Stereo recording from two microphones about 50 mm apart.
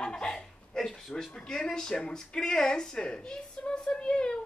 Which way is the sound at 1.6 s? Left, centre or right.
Centre.